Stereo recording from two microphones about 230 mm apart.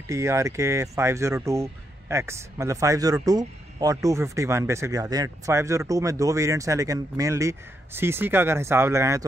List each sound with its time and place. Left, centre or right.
0.1 s speech: centre